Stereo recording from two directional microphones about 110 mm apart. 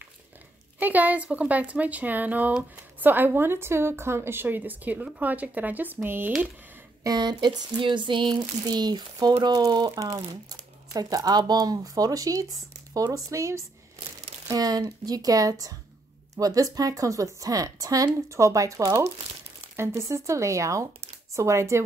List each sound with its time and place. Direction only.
0.7 s speech: 15° right (ahead or behind)
7.0 s speech: 35° right (ahead or behind)
19.8 s speech: 25° right (ahead or behind)